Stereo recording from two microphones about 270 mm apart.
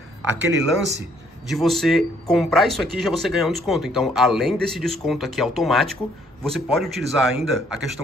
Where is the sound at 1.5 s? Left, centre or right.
Centre.